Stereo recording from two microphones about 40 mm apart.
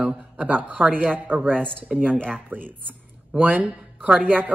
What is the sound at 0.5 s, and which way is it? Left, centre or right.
A man's voice, right.